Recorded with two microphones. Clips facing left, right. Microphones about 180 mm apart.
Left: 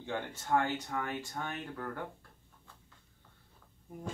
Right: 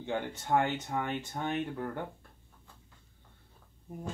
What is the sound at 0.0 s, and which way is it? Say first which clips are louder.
Speech: right 4 dB; 20° right (ahead or behind).